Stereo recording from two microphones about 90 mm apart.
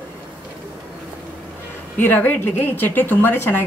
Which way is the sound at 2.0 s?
20° left (ahead or behind).